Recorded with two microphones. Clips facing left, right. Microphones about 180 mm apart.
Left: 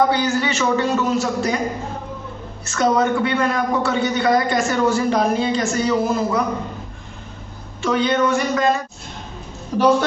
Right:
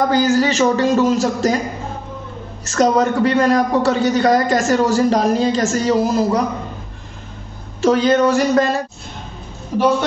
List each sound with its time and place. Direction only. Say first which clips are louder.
0.1 s a man's voice: right 5 dB; 40° right (ahead or behind)
2.6 s a man's voice: right 3 dB; 40° right (ahead or behind)
7.8 s a man's voice: right 5 dB; 40° right (ahead or behind)